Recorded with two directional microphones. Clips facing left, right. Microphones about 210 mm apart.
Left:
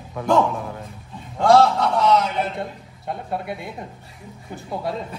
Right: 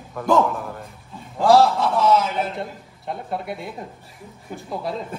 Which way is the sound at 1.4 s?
5° right (ahead or behind).